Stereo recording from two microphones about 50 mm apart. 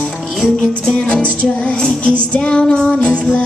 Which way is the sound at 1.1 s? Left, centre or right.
Left.